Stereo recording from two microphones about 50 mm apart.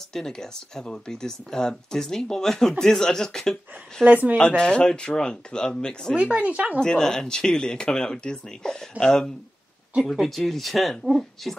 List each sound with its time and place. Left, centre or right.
0.1 s speech: centre
4.0 s speech: right
4.4 s speech: centre
6.1 s speech: right
6.8 s speech: centre